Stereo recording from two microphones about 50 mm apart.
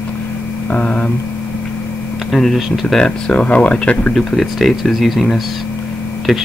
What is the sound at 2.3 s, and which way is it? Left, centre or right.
Speech, centre.